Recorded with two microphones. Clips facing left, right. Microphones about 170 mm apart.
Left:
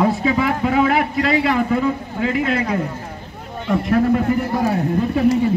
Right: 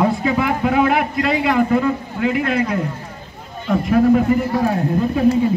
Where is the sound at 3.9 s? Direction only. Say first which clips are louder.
Right 3 dB; centre (ahead or behind).